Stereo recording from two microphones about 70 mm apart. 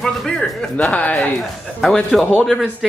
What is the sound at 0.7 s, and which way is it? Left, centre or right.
Speech, left.